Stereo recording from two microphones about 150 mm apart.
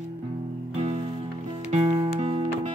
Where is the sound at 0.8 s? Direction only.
45° right (ahead or behind).